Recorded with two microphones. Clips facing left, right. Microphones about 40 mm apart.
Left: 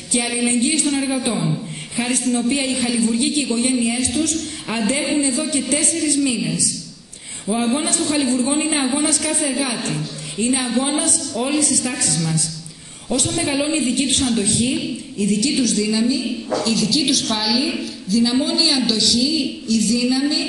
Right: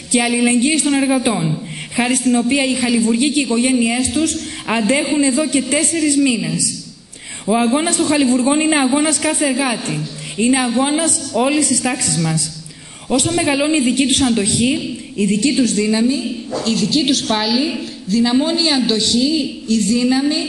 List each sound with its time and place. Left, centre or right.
0.1 s a man's voice: right
17.4 s a man's voice: centre